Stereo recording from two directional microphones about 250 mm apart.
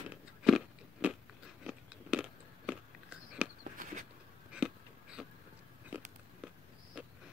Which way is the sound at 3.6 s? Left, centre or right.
Right.